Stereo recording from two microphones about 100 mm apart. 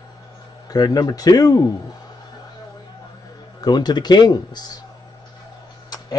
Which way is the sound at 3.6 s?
45° left (ahead or behind).